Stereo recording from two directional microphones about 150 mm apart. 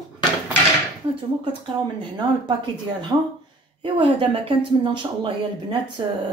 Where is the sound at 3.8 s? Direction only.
35° right (ahead or behind).